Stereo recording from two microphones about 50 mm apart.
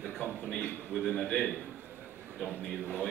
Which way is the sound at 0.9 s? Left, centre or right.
Centre.